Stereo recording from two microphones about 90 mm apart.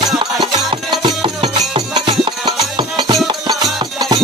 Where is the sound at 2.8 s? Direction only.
70° right (ahead or behind).